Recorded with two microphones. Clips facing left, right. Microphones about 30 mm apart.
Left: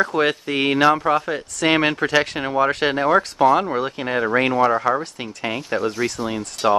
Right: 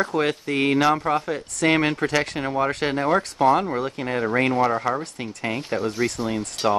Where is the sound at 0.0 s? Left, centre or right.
Left.